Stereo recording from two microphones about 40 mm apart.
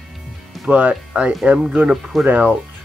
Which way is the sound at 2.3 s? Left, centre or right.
Right.